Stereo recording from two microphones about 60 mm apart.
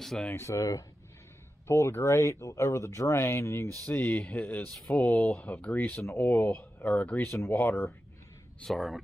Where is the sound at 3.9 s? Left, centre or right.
Left.